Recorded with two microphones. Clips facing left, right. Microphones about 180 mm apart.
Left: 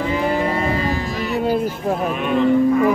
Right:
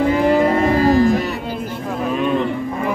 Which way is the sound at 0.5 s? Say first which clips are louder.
Right 6 dB; 50° right (ahead or behind).